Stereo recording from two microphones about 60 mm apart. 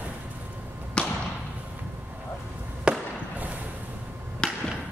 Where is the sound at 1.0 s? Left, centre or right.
Centre.